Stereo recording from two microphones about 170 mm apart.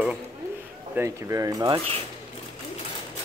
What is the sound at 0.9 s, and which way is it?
Speech, 15° right (ahead or behind).